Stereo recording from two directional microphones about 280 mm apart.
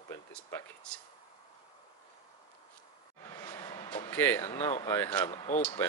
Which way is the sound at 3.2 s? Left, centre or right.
Centre.